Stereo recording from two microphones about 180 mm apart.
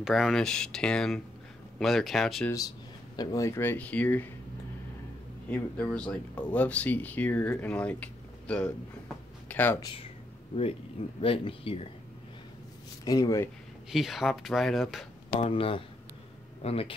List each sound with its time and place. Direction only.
0.0 s speech: centre (ahead or behind)
3.2 s speech: 15° left (ahead or behind)
5.5 s speech: 5° left (ahead or behind)
10.5 s speech: 30° left (ahead or behind)
13.0 s speech: 20° left (ahead or behind)
13.8 s speech: centre (ahead or behind)
15.2 s speech: 30° left (ahead or behind)